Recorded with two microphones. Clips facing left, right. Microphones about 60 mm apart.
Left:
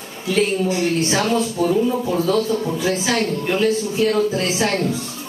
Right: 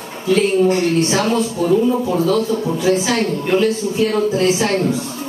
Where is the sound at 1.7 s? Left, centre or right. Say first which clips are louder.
Right 6 dB; centre.